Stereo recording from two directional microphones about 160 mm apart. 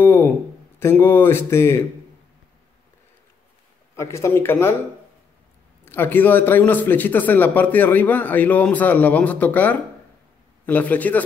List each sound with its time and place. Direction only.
0.0 s a sound: 15° left (ahead or behind)
0.7 s speech: 15° left (ahead or behind)
3.9 s speech: 20° left (ahead or behind)
5.9 s speech: 15° left (ahead or behind)